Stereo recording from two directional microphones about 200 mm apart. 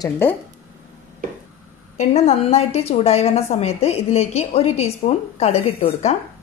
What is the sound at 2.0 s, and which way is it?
A woman's voice, 30° left (ahead or behind).